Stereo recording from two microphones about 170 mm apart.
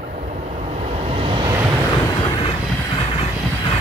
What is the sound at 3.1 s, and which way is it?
Train, 35° left (ahead or behind).